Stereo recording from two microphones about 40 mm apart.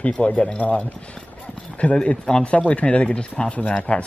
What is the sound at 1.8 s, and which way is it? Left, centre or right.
Speech, left.